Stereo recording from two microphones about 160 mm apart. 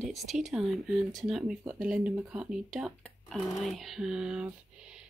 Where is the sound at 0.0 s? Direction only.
Centre (ahead or behind).